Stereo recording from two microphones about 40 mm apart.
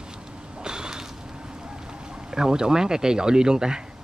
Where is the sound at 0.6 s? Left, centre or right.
Centre.